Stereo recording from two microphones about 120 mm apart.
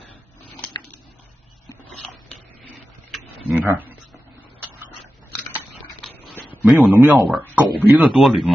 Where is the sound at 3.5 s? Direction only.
15° right (ahead or behind).